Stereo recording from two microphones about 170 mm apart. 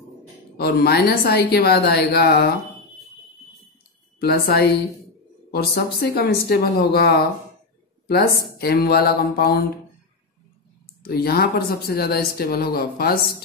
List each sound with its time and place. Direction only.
0.6 s a woman's voice: 70° left (ahead or behind)
4.2 s a woman's voice: 65° left (ahead or behind)
8.5 s speech: 65° left (ahead or behind)
11.0 s speech: 65° left (ahead or behind)